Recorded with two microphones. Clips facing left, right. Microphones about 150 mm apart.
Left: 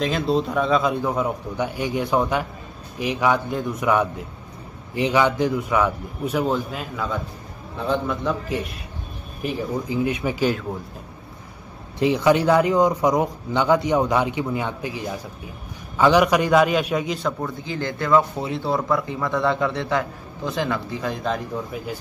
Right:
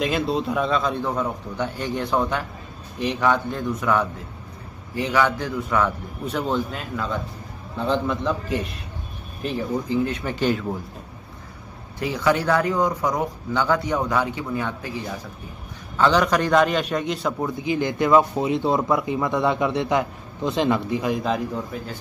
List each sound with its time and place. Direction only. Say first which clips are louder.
0.0 s a man's voice: left 1 dB; centre (ahead or behind)
12.0 s a man's voice: left 4 dB; 20° left (ahead or behind)
16.0 s a man's voice: left 2 dB; 10° left (ahead or behind)
17.6 s speech: right 5 dB; 15° right (ahead or behind)